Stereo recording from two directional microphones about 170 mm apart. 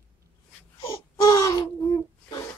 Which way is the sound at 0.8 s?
20° left (ahead or behind).